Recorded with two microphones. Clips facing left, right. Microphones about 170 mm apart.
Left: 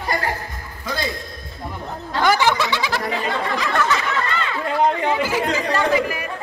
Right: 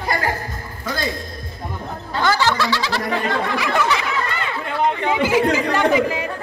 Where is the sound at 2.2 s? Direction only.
15° left (ahead or behind).